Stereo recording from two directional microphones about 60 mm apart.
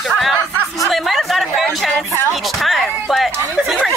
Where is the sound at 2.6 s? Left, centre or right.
Centre.